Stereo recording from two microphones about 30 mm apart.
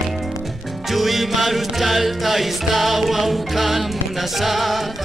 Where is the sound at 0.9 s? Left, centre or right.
Centre.